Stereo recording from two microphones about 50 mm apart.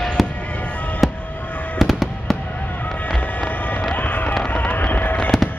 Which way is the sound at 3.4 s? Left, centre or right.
Left.